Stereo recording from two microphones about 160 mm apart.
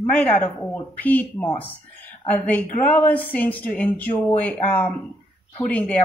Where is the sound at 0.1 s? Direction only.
5° left (ahead or behind).